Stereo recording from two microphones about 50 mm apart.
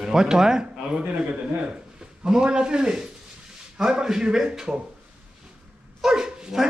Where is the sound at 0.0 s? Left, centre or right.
Centre.